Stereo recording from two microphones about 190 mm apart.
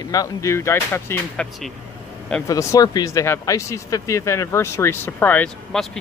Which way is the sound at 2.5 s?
15° left (ahead or behind).